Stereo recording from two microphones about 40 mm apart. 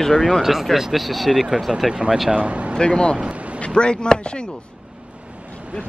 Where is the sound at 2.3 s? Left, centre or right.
Right.